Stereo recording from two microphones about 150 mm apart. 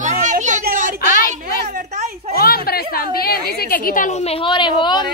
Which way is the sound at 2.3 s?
90° left.